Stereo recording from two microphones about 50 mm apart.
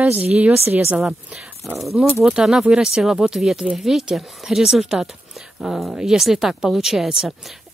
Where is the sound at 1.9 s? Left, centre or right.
Right.